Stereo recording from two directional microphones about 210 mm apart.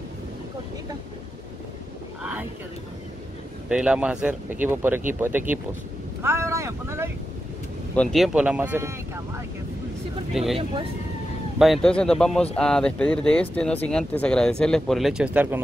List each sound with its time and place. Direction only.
3.6 s speech: 5° right (ahead or behind)
7.9 s speech: 5° left (ahead or behind); by 9.2 s 10° right (ahead or behind)
10.3 s speech: centre (ahead or behind)